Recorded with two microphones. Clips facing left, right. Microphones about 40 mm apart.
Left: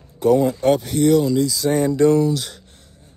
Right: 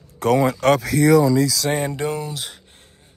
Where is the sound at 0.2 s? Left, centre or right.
Right.